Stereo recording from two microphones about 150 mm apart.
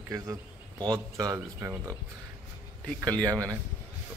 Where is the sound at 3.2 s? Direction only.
25° right (ahead or behind).